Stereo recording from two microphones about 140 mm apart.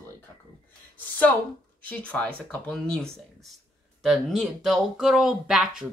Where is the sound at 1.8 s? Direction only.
10° left (ahead or behind).